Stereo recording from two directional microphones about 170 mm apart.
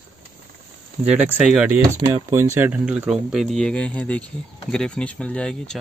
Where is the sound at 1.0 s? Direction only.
5° right (ahead or behind).